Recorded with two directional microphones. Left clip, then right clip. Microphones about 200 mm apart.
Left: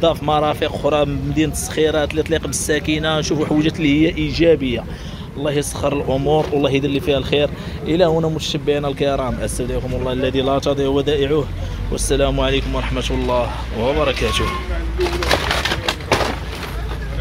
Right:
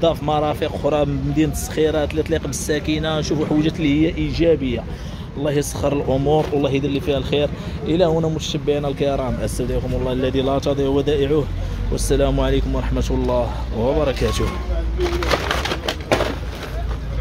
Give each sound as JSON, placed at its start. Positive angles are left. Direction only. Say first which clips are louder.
{"t": 0.0, "sound": "speech", "louder": "left 2 dB", "side_deg": 0}
{"t": 5.4, "sound": "speech", "louder": "left 1 dB", "side_deg": -15}